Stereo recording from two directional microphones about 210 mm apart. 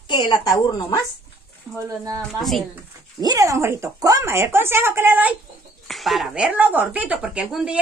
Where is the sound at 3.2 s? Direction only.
15° right (ahead or behind).